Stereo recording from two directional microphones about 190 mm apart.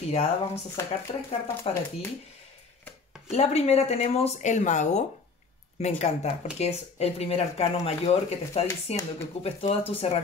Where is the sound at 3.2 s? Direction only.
35° left (ahead or behind).